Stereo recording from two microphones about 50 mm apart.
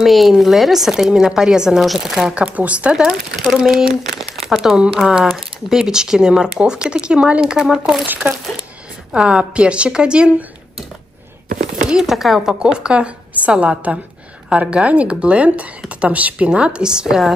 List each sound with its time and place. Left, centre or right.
0.0 s speech: centre
1.8 s speech: centre
2.4 s a woman's voice: right
3.4 s speech: centre
7.5 s speech: centre
9.1 s a woman's voice: centre
11.9 s a woman's voice: centre